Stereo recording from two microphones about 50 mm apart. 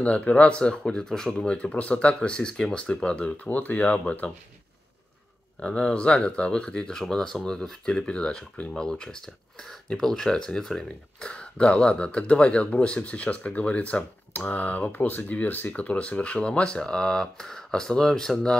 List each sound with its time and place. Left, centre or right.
0.0 s speech: left
3.4 s speech: left
5.6 s speech: centre